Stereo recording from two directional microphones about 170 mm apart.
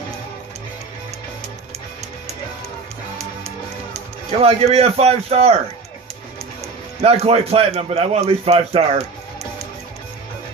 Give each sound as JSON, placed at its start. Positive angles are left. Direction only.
{"t": 4.3, "sound": "a man's voice", "side_deg": -35}
{"t": 7.0, "sound": "a man's voice", "side_deg": -35}